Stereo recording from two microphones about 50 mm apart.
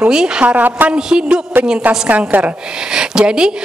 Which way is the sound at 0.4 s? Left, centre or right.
Right.